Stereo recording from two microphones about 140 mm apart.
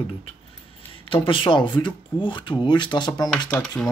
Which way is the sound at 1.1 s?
40° left (ahead or behind).